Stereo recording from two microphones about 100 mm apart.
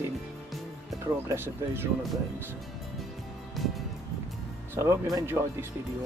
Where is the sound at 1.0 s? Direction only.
25° right (ahead or behind).